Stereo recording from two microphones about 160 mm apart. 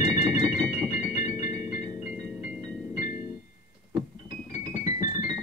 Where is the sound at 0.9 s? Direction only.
45° left (ahead or behind).